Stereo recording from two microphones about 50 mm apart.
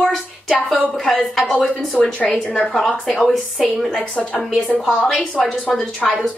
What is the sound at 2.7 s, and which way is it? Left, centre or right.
A woman's voice, centre.